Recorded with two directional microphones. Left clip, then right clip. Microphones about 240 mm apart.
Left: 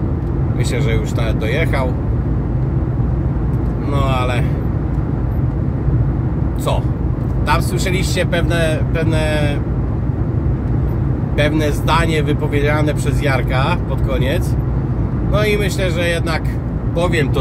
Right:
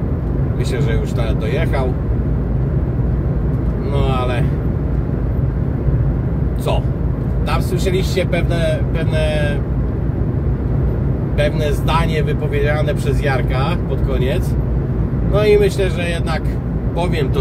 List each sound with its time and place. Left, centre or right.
7.4 s speech: left
11.4 s speech: left
15.3 s speech: left